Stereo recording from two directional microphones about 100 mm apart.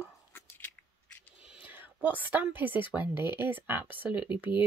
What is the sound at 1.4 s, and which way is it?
A woman's voice, 10° right (ahead or behind).